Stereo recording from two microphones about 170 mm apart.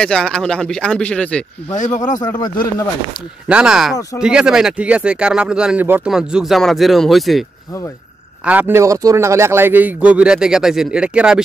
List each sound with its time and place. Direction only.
0.0 s speech: 5° left (ahead or behind)
1.8 s speech: 45° left (ahead or behind)
2.2 s speech: 25° left (ahead or behind)
3.4 s speech: 5° right (ahead or behind)
8.5 s a man's voice: 10° right (ahead or behind)